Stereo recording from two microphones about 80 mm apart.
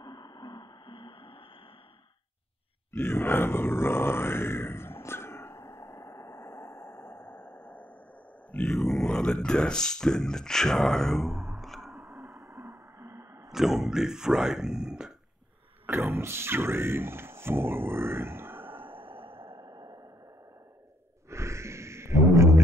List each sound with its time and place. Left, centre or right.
0.0 s radio: left
2.9 s grunt: left
8.6 s a sound: centre
12.6 s a sound: right
13.5 s speech: centre
15.9 s speech: right
18.9 s music: right
21.3 s music: right